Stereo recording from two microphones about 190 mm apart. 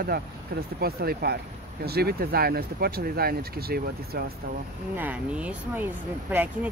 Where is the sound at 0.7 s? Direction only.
55° right (ahead or behind).